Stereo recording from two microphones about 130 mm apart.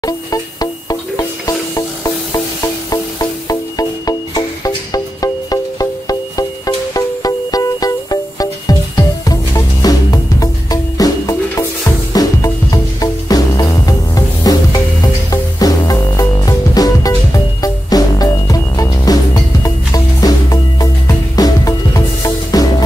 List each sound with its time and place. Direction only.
0.0 s music: 30° left (ahead or behind)